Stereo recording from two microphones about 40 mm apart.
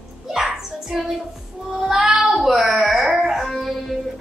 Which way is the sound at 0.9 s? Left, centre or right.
Centre.